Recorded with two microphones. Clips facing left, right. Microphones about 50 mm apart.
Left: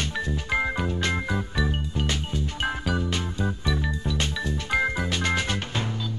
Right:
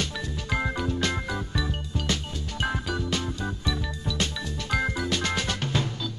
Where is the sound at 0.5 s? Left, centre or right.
Centre.